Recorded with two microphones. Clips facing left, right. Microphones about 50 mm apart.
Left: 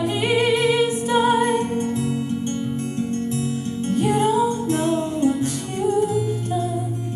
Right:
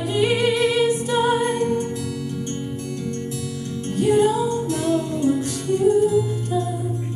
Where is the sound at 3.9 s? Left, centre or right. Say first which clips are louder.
Right 2 dB; left.